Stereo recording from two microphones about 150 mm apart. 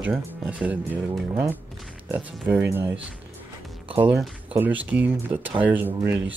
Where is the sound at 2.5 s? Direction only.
15° right (ahead or behind).